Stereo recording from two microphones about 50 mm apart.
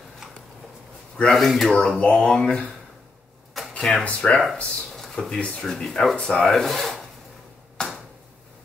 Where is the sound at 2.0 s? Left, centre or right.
Left.